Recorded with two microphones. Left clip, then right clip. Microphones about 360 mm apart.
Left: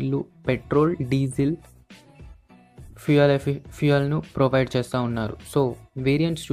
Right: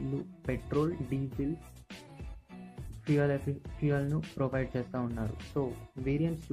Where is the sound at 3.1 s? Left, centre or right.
Left.